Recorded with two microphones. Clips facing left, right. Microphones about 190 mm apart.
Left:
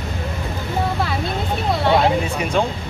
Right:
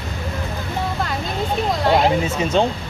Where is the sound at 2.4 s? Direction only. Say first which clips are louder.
Right 2 dB; 25° right (ahead or behind).